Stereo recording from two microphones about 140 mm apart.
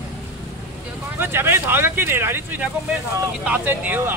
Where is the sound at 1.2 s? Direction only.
15° right (ahead or behind).